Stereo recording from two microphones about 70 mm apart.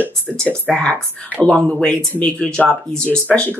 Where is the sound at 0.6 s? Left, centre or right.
Centre.